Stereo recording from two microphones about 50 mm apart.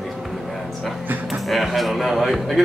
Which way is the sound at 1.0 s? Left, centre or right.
Right.